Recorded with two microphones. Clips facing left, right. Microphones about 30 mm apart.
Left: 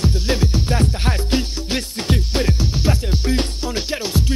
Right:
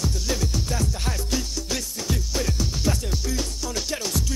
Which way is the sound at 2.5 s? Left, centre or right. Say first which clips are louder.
Left 5 dB; left.